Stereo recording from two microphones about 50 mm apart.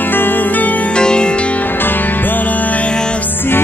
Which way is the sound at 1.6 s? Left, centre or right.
Left.